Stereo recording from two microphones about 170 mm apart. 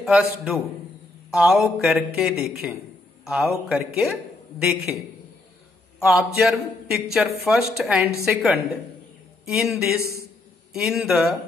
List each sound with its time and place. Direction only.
0.0 s a man's voice: 5° right (ahead or behind)
5.9 s a man's voice: centre (ahead or behind)
9.9 s a man's voice: 15° left (ahead or behind)
10.7 s a man's voice: centre (ahead or behind)